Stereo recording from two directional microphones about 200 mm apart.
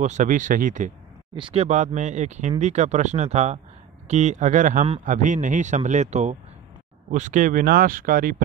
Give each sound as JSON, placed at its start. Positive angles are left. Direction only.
{"t": 0.0, "sound": "speech", "side_deg": -40}
{"t": 1.3, "sound": "speech", "side_deg": -25}